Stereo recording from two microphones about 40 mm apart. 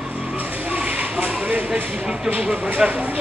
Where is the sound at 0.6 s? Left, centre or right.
Right.